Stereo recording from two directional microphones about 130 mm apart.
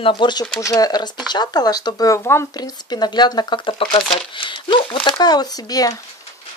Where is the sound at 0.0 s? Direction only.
40° left (ahead or behind); by 2.4 s 20° left (ahead or behind).